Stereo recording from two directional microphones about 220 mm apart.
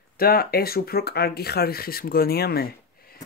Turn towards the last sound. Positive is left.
turn(degrees=45)  # may be behind; listen again after turning